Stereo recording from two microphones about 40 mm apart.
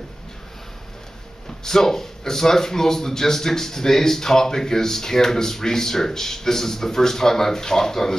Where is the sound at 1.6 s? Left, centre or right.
Centre.